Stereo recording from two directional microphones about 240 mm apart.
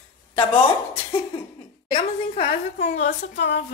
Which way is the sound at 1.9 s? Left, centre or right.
Left.